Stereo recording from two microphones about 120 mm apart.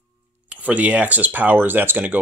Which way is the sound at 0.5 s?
15° right (ahead or behind).